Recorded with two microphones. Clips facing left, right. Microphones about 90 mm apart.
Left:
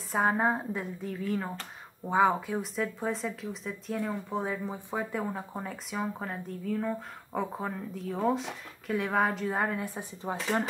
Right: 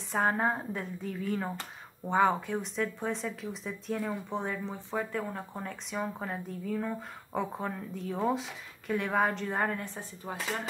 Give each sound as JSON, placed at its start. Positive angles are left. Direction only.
{"t": 0.1, "sound": "speech", "side_deg": 5}
{"t": 10.3, "sound": "speech", "side_deg": 25}